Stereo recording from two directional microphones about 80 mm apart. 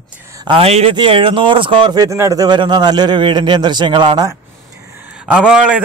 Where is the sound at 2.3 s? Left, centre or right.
Right.